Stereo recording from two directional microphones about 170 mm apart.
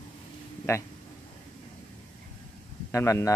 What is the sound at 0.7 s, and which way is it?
Speech, 15° left (ahead or behind).